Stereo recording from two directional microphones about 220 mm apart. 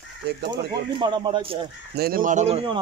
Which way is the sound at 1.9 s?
45° right (ahead or behind).